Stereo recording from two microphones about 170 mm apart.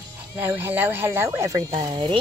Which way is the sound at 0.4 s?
10° right (ahead or behind).